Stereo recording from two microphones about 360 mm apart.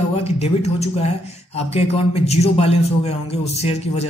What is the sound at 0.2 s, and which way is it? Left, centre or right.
Speech, centre.